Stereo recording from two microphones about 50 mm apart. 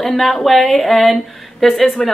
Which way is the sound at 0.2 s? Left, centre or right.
Centre.